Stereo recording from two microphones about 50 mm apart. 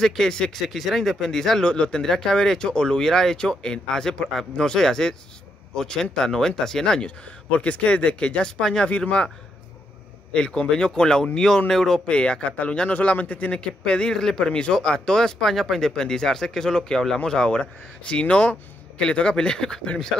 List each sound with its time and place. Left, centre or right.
0.0 s a man's voice: centre
7.1 s a man's voice: left
10.3 s a man's voice: centre
12.1 s a man's voice: left